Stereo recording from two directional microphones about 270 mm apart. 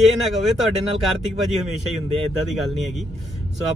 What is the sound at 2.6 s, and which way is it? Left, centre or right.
Speech, centre.